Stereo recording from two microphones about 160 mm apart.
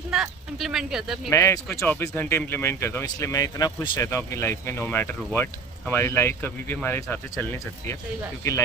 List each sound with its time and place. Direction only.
0.1 s speech: centre (ahead or behind)
1.3 s speech: 20° left (ahead or behind)